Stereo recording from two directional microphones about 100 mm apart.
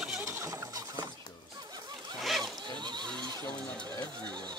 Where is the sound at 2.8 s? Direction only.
45° right (ahead or behind).